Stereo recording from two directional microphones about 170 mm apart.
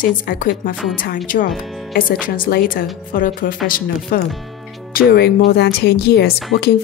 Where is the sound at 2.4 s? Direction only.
55° left (ahead or behind).